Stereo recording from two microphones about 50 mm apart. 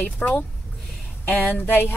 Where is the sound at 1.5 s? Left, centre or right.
Left.